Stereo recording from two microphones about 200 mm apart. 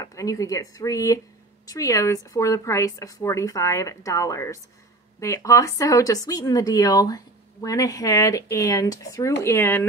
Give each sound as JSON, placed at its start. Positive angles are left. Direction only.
{"t": 0.0, "sound": "speech", "side_deg": 15}